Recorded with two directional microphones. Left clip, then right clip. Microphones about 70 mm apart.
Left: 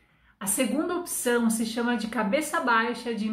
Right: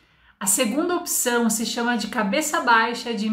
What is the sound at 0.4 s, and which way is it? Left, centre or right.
A woman's voice, right.